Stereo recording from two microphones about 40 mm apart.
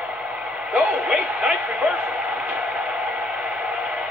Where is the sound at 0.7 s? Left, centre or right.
Right.